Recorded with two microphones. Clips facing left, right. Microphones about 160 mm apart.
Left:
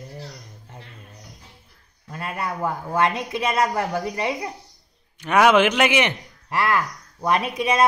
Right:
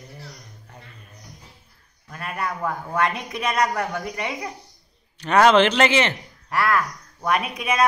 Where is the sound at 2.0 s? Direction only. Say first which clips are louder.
Left 1 dB; 25° left (ahead or behind).